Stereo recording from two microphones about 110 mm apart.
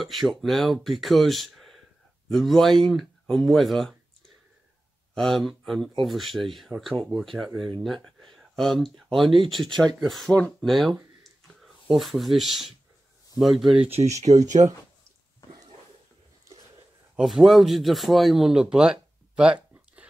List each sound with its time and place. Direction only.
0.0 s speech: centre (ahead or behind)
5.1 s speech: centre (ahead or behind)
14.1 s speech: 90° right
16.5 s a sound: 30° right (ahead or behind)
17.1 s speech: 5° right (ahead or behind)